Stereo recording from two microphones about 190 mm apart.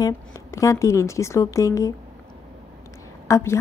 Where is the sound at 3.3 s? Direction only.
15° left (ahead or behind).